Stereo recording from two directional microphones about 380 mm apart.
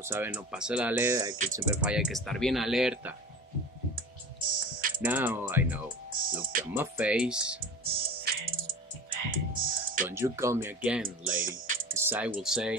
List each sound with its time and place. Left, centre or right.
0.0 s speech: centre
3.9 s typing: right
5.0 s speech: centre
6.0 s music: right
6.6 s speech: centre
7.8 s music: right
10.0 s speech: centre
11.3 s music: right
11.9 s speech: centre